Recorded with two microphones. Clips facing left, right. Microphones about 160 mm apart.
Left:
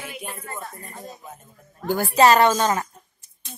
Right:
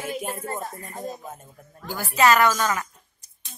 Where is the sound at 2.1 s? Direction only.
35° left (ahead or behind).